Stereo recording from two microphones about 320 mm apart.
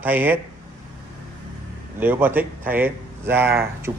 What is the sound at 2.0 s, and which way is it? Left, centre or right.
Speech, centre.